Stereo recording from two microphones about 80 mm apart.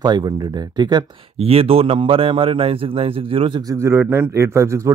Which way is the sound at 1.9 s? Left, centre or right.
Right.